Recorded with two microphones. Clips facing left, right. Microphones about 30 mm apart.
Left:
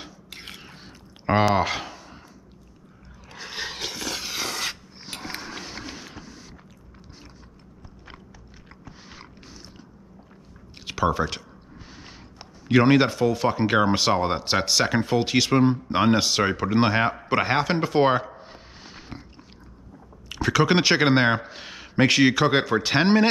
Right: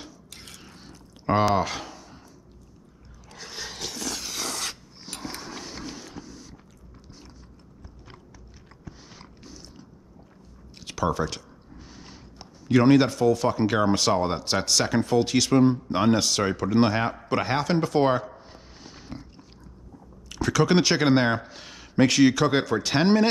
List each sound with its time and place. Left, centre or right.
0.0 s chewing: left
1.5 s a sound: left
3.3 s dog: left
8.8 s biting: centre
10.8 s speech: centre
20.2 s speech: centre